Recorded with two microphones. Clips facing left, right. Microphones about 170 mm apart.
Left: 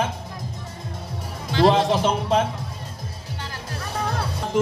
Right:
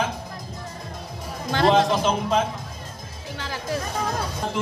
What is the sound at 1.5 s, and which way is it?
Speech, 55° right (ahead or behind).